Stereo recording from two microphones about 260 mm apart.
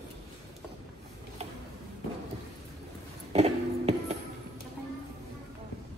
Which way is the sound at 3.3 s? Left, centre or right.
Right.